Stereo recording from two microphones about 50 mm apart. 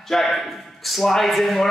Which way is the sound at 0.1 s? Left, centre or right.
Centre.